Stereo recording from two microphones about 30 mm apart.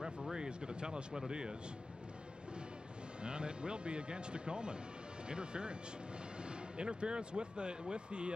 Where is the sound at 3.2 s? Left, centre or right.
Right.